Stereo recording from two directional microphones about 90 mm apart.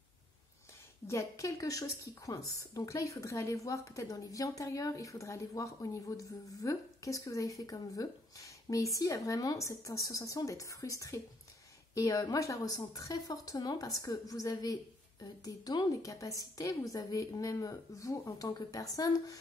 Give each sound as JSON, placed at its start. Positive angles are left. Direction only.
{"t": 1.0, "sound": "a woman's voice", "side_deg": 35}
{"t": 16.0, "sound": "a woman's voice", "side_deg": 40}